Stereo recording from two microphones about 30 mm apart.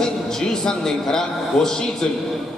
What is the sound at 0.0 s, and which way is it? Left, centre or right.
A man's voice, centre.